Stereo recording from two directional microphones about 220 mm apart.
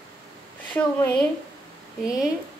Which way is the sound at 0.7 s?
10° left (ahead or behind).